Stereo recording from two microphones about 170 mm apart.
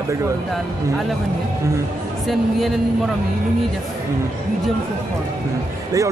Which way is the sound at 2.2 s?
Centre (ahead or behind).